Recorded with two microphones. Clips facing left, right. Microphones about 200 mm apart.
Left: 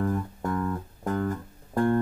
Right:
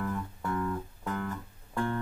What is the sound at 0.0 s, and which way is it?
Music, 40° left (ahead or behind).